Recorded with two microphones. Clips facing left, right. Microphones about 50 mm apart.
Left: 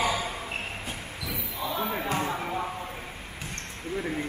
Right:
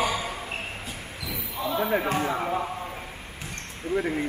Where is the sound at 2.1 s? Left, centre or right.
Centre.